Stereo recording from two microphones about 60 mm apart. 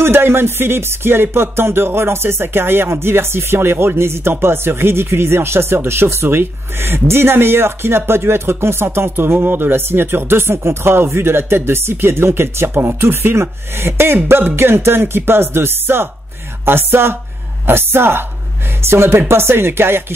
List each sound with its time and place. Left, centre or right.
0.0 s music: right
18.9 s speech: right